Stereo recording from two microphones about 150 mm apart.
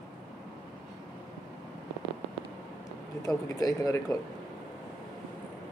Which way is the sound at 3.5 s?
25° left (ahead or behind).